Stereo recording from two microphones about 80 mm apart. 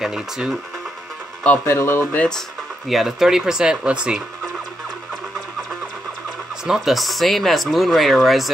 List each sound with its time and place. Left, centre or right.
0.0 s speech: centre
1.7 s speech: left
2.1 s speech: centre
2.9 s speech: centre
6.6 s speech: centre